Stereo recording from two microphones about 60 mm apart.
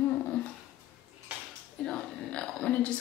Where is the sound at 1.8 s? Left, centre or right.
Centre.